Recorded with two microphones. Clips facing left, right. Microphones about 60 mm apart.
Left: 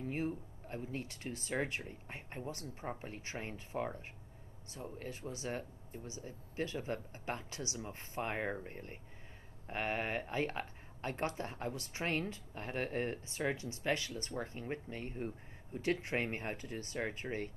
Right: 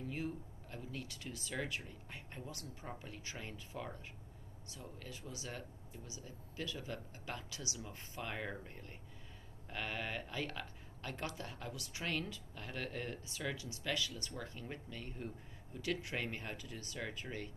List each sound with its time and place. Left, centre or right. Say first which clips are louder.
0.0 s speech: left 4 dB; left